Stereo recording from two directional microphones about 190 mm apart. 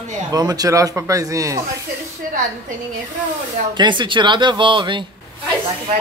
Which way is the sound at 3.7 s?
25° right (ahead or behind).